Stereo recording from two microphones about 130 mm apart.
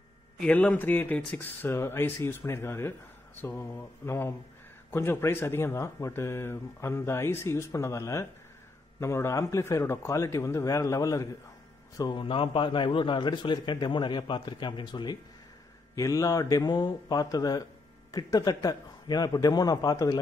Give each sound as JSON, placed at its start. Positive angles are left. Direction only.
{"t": 0.4, "sound": "speech", "side_deg": 10}
{"t": 12.0, "sound": "a man's voice", "side_deg": 40}